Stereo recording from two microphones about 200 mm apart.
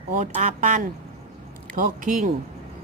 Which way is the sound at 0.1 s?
35° right (ahead or behind).